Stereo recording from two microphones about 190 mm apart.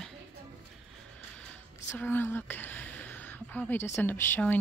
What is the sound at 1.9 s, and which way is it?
Speech, 10° left (ahead or behind).